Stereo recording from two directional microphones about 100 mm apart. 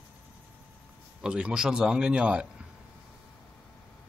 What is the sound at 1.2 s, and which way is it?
Speech, 10° right (ahead or behind).